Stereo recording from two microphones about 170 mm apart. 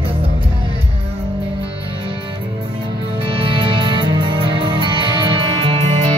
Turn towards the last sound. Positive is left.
turn(degrees=-35)  # may be behind; listen again after turning